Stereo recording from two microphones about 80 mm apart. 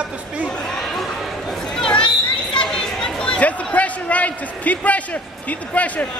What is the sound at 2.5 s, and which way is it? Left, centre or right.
Speech, centre.